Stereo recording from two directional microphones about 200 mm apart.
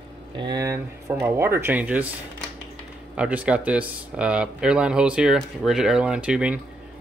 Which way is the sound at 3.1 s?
5° right (ahead or behind).